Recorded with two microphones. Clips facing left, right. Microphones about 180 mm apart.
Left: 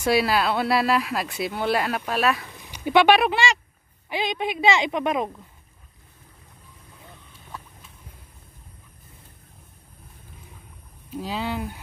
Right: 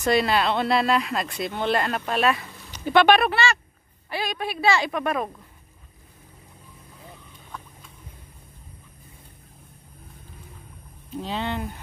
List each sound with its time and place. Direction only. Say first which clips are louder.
0.0 s speech: even; 5° left (ahead or behind)
2.5 s a woman's voice: even; 15° left (ahead or behind)
11.1 s speech: even; 5° left (ahead or behind)